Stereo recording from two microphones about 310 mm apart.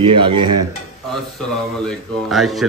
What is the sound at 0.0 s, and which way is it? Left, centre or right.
Dishes, centre.